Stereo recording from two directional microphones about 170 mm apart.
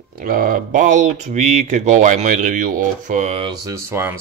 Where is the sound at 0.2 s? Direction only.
55° right (ahead or behind).